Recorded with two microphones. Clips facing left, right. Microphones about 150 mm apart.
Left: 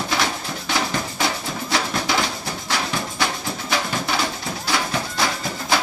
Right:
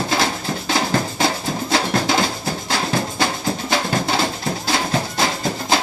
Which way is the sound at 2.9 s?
30° right (ahead or behind).